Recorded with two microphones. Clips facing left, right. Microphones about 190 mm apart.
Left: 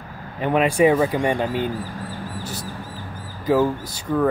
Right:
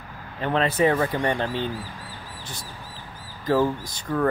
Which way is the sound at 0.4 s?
10° left (ahead or behind).